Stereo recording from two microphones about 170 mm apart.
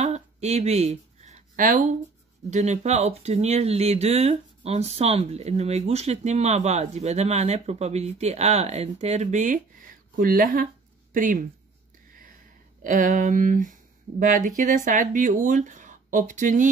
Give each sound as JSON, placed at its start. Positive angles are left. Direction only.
{"t": 0.0, "sound": "a sound", "side_deg": -40}
{"t": 2.5, "sound": "speech", "side_deg": -40}
{"t": 12.8, "sound": "speech", "side_deg": -50}